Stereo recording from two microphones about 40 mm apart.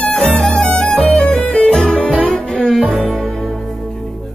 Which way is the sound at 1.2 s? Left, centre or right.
Left.